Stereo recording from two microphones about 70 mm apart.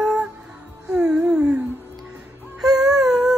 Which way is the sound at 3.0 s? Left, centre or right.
Centre.